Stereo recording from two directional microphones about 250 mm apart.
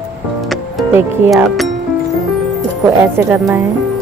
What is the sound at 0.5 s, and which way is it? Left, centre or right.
Speech, centre.